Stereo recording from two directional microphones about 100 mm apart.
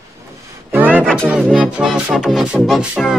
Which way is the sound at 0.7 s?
20° right (ahead or behind).